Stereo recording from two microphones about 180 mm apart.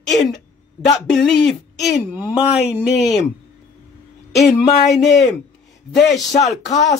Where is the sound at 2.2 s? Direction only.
30° left (ahead or behind).